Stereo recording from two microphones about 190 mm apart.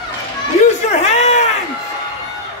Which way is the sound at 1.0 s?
35° left (ahead or behind).